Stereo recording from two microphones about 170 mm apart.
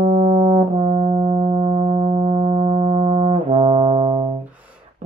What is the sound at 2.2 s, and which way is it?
Brass instrument, 35° right (ahead or behind).